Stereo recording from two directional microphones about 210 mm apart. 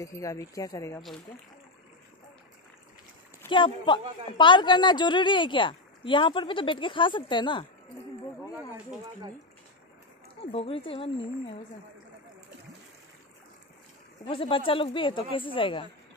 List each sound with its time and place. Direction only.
0.0 s speech: 15° left (ahead or behind)
3.4 s a woman's voice: 25° left (ahead or behind)
10.5 s a woman's voice: 25° left (ahead or behind)
14.2 s a woman's voice: 25° left (ahead or behind)